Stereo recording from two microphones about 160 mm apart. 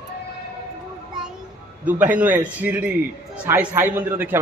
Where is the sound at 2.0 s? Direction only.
10° right (ahead or behind).